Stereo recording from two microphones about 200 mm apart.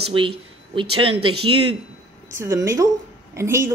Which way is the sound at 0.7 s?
25° right (ahead or behind).